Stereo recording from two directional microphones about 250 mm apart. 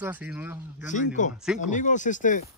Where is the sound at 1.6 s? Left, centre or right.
Left.